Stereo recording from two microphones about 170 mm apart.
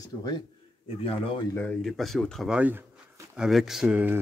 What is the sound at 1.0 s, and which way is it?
Speech, 35° left (ahead or behind).